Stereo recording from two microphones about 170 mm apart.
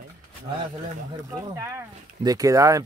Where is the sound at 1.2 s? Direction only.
20° right (ahead or behind).